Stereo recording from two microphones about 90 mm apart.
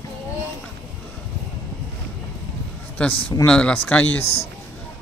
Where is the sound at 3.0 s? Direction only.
15° left (ahead or behind).